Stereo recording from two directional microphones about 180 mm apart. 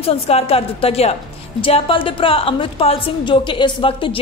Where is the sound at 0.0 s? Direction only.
35° left (ahead or behind).